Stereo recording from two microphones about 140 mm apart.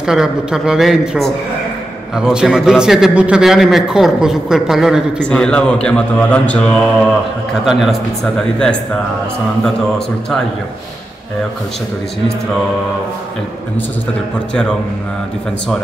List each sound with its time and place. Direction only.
0.0 s a man's voice: 5° right (ahead or behind)
5.4 s mantra: 5° left (ahead or behind)
7.6 s a man's voice: 5° right (ahead or behind)